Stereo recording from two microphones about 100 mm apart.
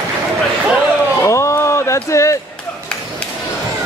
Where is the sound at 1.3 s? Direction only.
30° left (ahead or behind).